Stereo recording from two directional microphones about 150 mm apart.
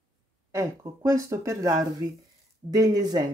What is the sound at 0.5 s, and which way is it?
Speech, 20° right (ahead or behind).